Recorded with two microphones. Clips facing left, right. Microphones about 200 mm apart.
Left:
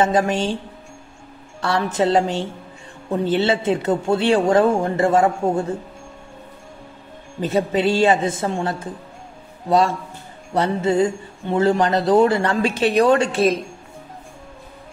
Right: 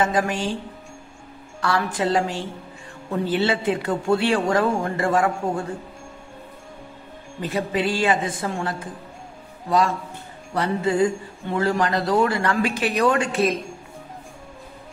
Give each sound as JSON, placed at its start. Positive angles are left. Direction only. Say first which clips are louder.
{"t": 0.0, "sound": "speech", "louder": "left 4 dB", "side_deg": 25}
{"t": 1.6, "sound": "speech", "louder": "left 3 dB", "side_deg": 25}
{"t": 7.4, "sound": "speech", "louder": "left 5 dB", "side_deg": 25}